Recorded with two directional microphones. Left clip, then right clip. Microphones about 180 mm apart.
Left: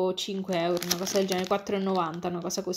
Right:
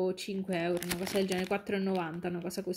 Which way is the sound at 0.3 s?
5° right (ahead or behind).